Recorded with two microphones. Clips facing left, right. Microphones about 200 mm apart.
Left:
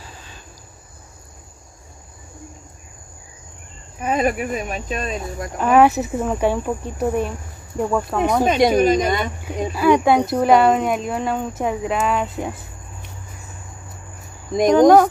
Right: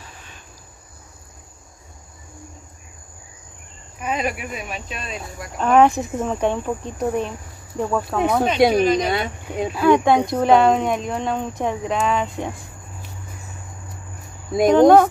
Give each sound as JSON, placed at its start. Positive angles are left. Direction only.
{"t": 4.0, "sound": "speech", "side_deg": 45}
{"t": 5.6, "sound": "speech", "side_deg": 5}
{"t": 8.7, "sound": "speech", "side_deg": 45}
{"t": 9.8, "sound": "speech", "side_deg": 5}
{"t": 14.5, "sound": "speech", "side_deg": -5}